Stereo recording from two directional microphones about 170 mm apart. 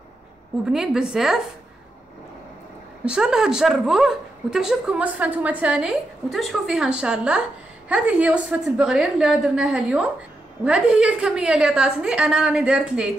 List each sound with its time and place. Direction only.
0.7 s a woman's voice: 5° right (ahead or behind)
3.1 s a woman's voice: 5° right (ahead or behind)